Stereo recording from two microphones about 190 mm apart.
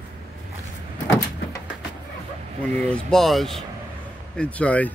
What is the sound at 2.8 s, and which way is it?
Speech, 5° left (ahead or behind).